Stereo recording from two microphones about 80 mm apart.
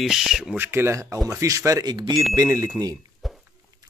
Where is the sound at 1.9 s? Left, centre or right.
Right.